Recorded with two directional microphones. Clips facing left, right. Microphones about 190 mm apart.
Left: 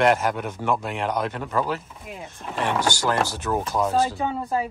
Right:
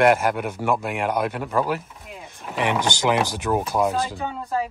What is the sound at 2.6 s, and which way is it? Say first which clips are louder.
Speech: right 2 dB; 20° right (ahead or behind).